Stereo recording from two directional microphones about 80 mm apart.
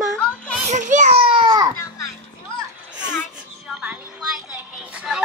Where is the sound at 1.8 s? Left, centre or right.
Left.